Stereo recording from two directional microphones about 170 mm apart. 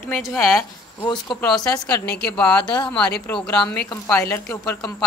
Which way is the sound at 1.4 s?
5° left (ahead or behind).